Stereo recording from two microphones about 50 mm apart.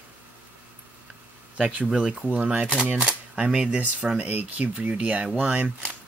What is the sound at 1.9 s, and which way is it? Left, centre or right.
Speech, centre.